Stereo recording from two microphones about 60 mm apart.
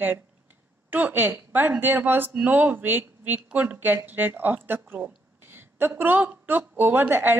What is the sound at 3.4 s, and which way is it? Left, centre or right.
A woman's voice, right.